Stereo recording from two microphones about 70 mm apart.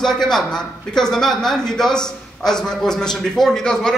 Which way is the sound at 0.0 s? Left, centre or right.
Centre.